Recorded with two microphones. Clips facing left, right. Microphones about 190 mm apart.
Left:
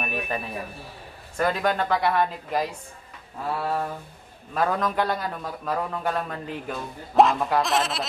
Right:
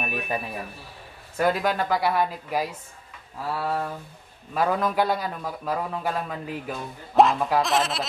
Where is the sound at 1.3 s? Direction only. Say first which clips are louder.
Right 1 dB; 5° right (ahead or behind).